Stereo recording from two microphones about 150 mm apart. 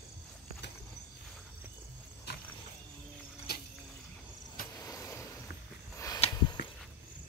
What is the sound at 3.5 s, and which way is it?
Mechanisms, 90° left.